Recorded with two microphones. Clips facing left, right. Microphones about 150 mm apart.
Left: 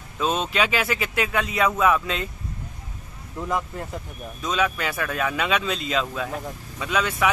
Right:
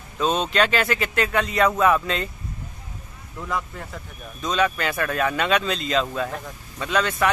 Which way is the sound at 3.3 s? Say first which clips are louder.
Left 2 dB; 20° left (ahead or behind).